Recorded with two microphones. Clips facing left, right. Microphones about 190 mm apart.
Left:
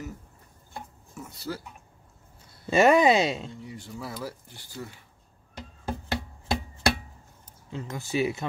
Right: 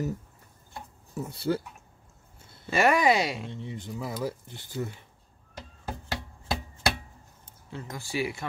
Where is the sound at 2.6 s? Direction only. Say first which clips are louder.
Left 4 dB; 25° left (ahead or behind).